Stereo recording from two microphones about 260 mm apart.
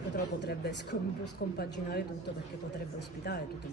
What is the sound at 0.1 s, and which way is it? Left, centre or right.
Speech, left.